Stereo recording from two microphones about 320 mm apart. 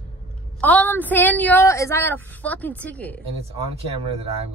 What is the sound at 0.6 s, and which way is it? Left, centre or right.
A woman's voice, centre.